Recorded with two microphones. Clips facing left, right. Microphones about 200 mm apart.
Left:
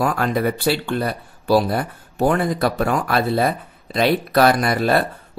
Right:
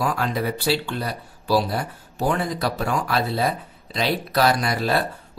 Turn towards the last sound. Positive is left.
turn(degrees=55)  # may be behind; listen again after turning